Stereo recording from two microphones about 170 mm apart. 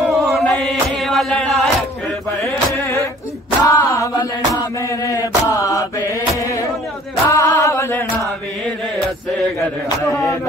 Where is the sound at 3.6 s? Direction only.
20° left (ahead or behind).